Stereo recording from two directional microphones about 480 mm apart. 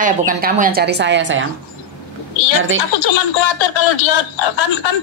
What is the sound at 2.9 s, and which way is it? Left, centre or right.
Speech, left.